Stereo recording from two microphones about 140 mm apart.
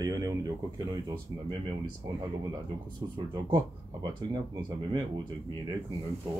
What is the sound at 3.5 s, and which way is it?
Speech, 25° right (ahead or behind).